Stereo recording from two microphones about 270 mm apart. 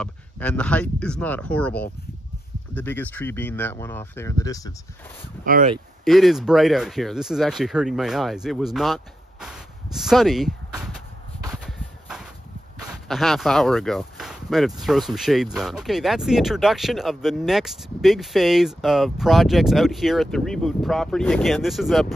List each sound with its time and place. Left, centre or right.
0.0 s speech: centre
5.4 s speech: right
6.0 s speech: centre
11.6 s a sound: centre
13.1 s speech: centre